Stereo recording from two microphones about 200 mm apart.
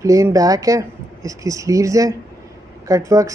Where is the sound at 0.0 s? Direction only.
15° right (ahead or behind).